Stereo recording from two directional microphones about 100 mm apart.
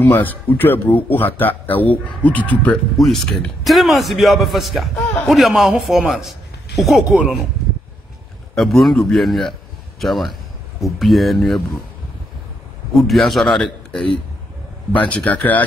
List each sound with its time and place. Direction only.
0.0 s speech: 20° left (ahead or behind)
3.0 s a man's voice: 5° left (ahead or behind)
7.1 s speech: 15° right (ahead or behind)
8.5 s a man's voice: centre (ahead or behind)
13.0 s speech: centre (ahead or behind)
14.9 s speech: 15° left (ahead or behind)